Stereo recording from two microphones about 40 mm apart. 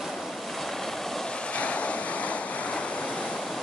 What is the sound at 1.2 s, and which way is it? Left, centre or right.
Waves, left.